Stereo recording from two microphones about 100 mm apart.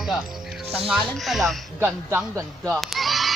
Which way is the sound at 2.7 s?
Centre (ahead or behind).